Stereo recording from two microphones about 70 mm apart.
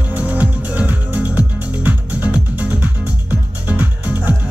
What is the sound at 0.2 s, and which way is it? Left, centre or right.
Music, right.